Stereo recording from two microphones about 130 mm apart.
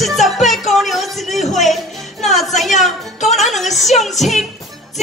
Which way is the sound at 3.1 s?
65° left (ahead or behind).